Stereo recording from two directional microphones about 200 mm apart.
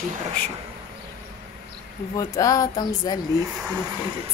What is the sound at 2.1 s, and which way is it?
Speech, 15° left (ahead or behind).